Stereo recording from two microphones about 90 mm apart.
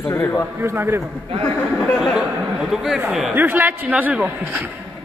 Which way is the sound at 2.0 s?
5° right (ahead or behind).